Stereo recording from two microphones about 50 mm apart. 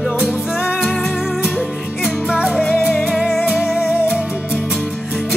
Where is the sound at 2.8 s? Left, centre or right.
Centre.